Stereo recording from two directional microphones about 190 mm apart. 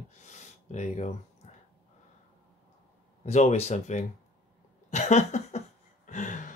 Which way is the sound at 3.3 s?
35° left (ahead or behind).